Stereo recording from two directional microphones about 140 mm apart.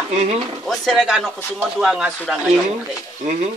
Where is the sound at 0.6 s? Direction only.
5° left (ahead or behind).